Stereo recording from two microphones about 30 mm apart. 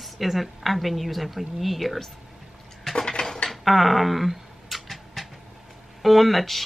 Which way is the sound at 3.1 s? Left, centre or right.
Left.